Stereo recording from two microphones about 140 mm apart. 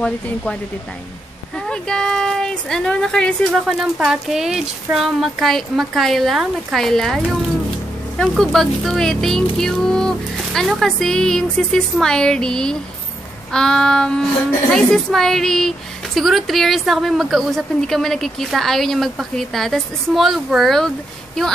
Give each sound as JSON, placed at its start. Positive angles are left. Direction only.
{"t": 1.7, "sound": "a woman's voice", "side_deg": 5}
{"t": 8.2, "sound": "a woman's voice", "side_deg": 0}